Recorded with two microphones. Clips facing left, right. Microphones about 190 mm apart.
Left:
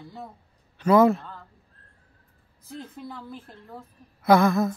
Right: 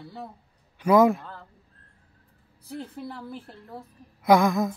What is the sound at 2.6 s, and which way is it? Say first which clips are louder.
A woman's voice: right 2 dB; 10° right (ahead or behind).